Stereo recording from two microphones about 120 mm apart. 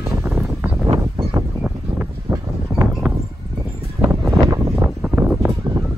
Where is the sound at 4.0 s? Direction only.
25° right (ahead or behind).